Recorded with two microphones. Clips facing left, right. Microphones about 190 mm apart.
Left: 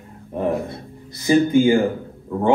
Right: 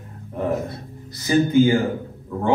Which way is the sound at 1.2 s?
20° left (ahead or behind).